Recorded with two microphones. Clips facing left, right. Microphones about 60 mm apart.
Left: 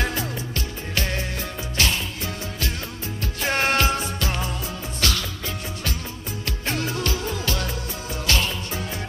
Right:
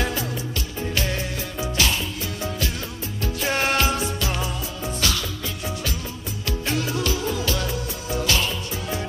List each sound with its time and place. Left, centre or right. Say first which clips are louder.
0.9 s music: left 1 dB; left
3.4 s music: left 1 dB; left
6.4 s music: right 2 dB; left